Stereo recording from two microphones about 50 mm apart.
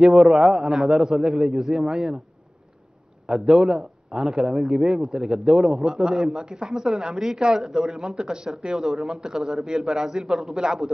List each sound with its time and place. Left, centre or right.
0.0 s speech: centre
1.6 s speech: centre
1.9 s speech: centre
3.3 s a man's voice: centre